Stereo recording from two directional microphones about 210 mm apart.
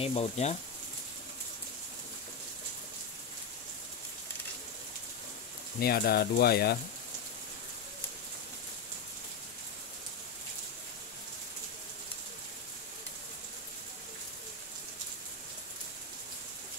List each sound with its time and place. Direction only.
0.0 s speech: 25° left (ahead or behind)
5.8 s speech: 45° left (ahead or behind)